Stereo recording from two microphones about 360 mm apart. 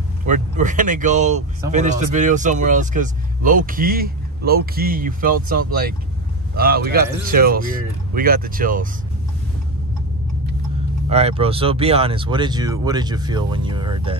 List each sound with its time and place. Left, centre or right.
0.3 s speech: right
11.1 s speech: centre